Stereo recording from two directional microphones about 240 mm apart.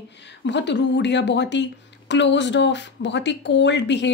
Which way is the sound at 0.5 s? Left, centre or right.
Left.